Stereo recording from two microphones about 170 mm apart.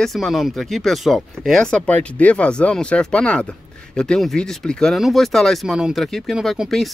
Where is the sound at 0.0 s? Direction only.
Centre (ahead or behind).